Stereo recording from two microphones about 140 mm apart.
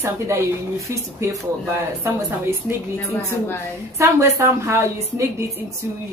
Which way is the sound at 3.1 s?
20° left (ahead or behind).